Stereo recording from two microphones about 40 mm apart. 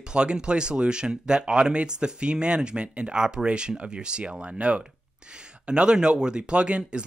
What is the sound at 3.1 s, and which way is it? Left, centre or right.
Speech, centre.